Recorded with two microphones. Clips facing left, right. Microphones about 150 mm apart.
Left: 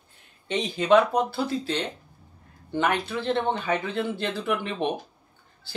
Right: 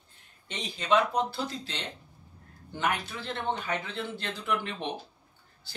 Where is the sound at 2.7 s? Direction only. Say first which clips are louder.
Left 6 dB; 65° left (ahead or behind).